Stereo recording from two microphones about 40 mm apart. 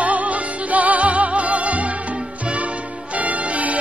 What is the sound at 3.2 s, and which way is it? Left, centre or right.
Music, right.